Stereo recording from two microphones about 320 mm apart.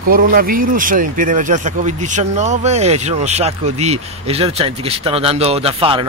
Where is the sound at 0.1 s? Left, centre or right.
Right.